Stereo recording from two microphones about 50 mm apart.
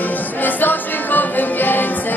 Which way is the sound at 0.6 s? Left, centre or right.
Left.